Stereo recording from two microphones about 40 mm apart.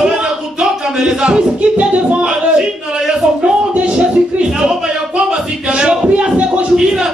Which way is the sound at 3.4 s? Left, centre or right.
Right.